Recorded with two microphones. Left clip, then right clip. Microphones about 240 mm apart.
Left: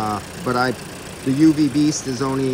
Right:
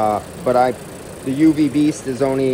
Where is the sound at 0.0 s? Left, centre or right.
Centre.